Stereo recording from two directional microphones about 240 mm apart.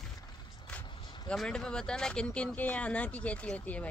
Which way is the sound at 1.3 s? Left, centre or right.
Centre.